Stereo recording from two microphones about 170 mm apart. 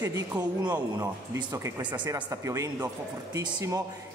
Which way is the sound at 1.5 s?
25° right (ahead or behind).